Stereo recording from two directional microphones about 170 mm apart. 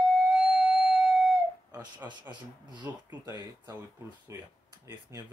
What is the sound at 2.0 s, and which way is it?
Speech, 25° right (ahead or behind).